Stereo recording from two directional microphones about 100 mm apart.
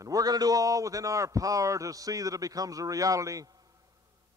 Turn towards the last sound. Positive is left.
turn(degrees=-40)  # may be behind; listen again after turning